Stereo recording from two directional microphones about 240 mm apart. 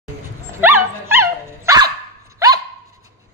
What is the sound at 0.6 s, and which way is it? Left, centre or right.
Dog, centre.